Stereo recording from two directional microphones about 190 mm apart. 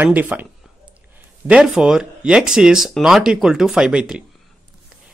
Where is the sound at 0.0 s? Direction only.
10° right (ahead or behind).